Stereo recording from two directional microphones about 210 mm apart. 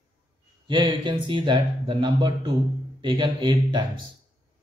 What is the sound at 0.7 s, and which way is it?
Speech, 20° right (ahead or behind).